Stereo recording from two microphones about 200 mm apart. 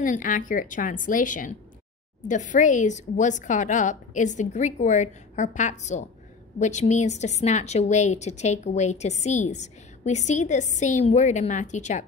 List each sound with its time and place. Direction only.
0.0 s a woman's voice: 40° left (ahead or behind)